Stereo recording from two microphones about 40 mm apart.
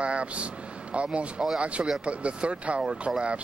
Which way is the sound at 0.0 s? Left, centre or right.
Right.